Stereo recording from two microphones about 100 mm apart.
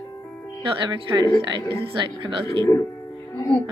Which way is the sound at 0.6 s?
60° right (ahead or behind).